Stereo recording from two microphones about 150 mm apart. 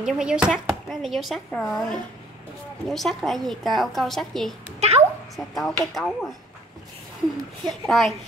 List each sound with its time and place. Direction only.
0.0 s speech: 5° right (ahead or behind)
4.7 s a child's voice: 45° right (ahead or behind)
5.3 s speech: centre (ahead or behind)
7.6 s speech: centre (ahead or behind)